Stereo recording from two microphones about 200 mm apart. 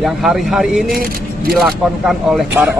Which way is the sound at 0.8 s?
50° right (ahead or behind).